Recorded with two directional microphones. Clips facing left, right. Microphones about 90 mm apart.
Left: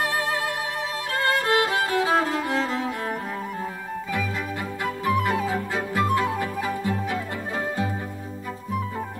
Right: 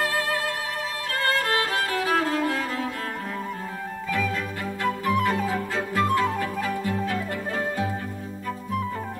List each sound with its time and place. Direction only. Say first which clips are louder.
0.0 s music: even; 20° left (ahead or behind)
1.1 s violin: left 3 dB; 20° left (ahead or behind)
5.0 s music: left 2 dB; 15° left (ahead or behind)